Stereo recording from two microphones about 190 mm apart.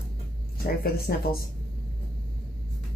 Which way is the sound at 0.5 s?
55° left (ahead or behind).